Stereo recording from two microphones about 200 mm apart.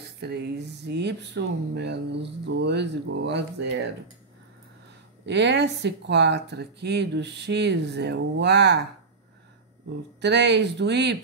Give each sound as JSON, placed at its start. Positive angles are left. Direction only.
{"t": 0.2, "sound": "speech", "side_deg": -55}
{"t": 5.2, "sound": "speech", "side_deg": -60}
{"t": 10.2, "sound": "speech", "side_deg": -60}